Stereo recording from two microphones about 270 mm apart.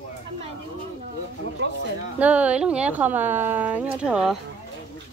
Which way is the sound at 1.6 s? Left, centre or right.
Right.